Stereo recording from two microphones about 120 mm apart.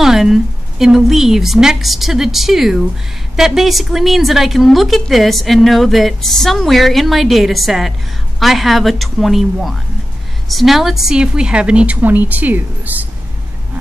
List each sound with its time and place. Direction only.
0.0 s a woman's voice: 5° right (ahead or behind)